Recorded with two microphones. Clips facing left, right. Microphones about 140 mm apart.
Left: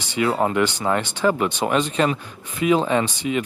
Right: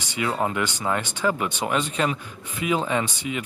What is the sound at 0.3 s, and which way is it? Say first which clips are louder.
Speech: left 4 dB; 35° left (ahead or behind).